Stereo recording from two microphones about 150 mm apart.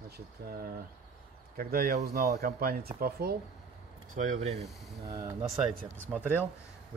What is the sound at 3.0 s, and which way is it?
Speech, 90° right.